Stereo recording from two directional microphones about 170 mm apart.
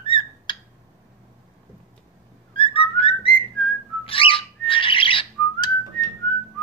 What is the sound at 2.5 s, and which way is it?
Whistling, 30° left (ahead or behind).